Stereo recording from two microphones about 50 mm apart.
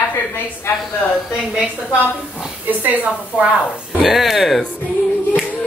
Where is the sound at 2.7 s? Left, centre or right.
Right.